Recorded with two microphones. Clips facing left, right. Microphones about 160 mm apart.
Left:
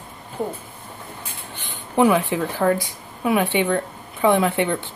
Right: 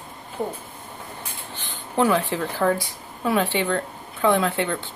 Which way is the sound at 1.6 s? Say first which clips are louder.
Left 4 dB; 10° left (ahead or behind).